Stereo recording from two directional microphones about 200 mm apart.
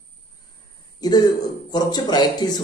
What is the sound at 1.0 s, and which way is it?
A man's voice, 20° left (ahead or behind).